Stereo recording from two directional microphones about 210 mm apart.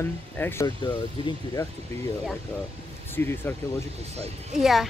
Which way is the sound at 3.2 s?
10° left (ahead or behind).